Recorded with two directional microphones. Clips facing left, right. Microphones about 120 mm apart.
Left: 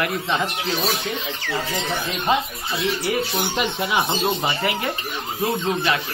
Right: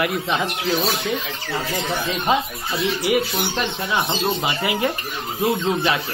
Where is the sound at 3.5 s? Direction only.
15° left (ahead or behind).